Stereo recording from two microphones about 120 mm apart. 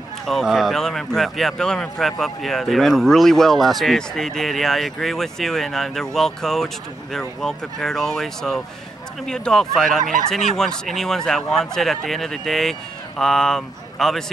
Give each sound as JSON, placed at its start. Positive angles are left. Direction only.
{"t": 0.3, "sound": "speech", "side_deg": 0}